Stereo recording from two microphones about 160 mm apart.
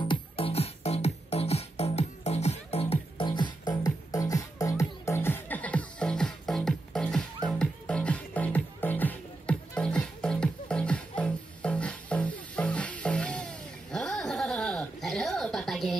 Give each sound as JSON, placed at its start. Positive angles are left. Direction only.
{"t": 0.0, "sound": "music", "side_deg": 35}